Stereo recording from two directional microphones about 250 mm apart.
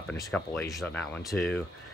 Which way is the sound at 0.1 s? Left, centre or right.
Centre.